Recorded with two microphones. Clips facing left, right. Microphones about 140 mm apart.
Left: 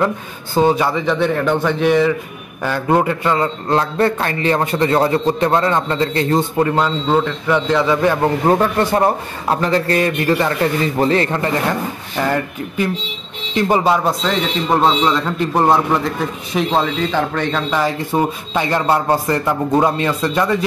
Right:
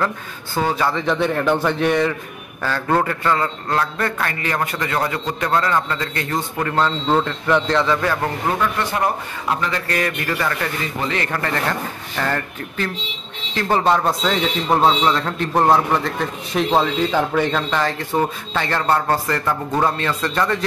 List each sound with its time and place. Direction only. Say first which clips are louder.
0.6 s a man's voice: left 5 dB; 20° left (ahead or behind)
1.0 s a man's voice: left 1 dB; centre (ahead or behind)
2.6 s a man's voice: left 4 dB; 15° left (ahead or behind)
6.7 s a man's voice: left 2 dB; 10° left (ahead or behind)
8.5 s a man's voice: left 6 dB; 40° left (ahead or behind); by 20.5 s 10° left (ahead or behind)